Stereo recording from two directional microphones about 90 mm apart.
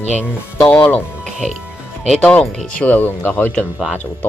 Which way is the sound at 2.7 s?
15° left (ahead or behind).